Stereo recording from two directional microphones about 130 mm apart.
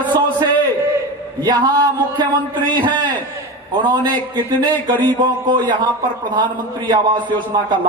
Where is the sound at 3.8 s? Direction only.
35° right (ahead or behind).